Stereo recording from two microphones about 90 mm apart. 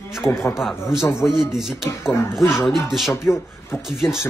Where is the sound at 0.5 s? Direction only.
5° right (ahead or behind).